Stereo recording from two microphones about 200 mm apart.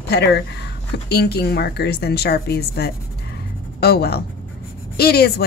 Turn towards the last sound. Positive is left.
turn(degrees=55)  # may be behind; listen again after turning